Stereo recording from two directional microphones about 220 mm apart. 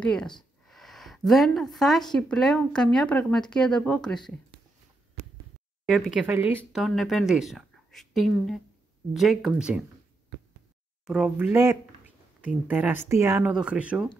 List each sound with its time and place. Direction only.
0.0 s speech: 5° left (ahead or behind)
0.4 s a sound: centre (ahead or behind)
2.1 s speech: 5° left (ahead or behind)
5.9 s speech: centre (ahead or behind)
11.1 s speech: centre (ahead or behind)